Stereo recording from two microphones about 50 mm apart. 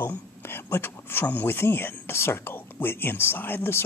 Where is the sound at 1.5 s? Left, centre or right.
Left.